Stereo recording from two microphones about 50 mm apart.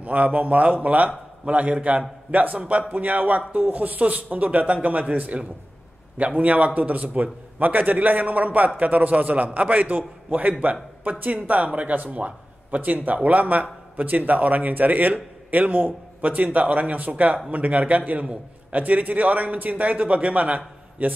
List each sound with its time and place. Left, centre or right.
0.0 s a man's voice: right